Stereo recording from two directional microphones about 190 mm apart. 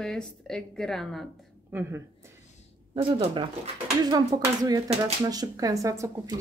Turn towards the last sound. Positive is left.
turn(degrees=-20)  # may be behind; listen again after turning